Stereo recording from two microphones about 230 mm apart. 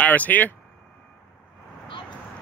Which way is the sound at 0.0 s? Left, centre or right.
Centre.